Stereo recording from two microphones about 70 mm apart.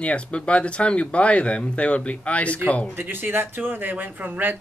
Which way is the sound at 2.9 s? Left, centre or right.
Right.